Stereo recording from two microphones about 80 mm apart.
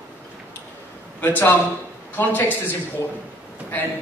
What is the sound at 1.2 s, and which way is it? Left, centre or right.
A man's voice, left.